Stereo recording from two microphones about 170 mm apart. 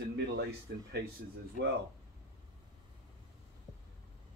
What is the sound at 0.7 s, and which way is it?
Speech, 65° right (ahead or behind).